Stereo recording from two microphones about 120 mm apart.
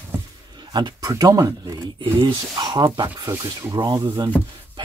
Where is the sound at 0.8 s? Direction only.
35° right (ahead or behind).